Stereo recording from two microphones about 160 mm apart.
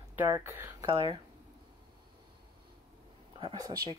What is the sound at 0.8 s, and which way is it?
Speech, 35° right (ahead or behind).